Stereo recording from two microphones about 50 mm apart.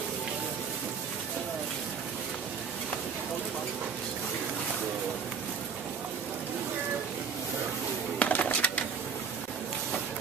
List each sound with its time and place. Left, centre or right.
8.2 s bird: left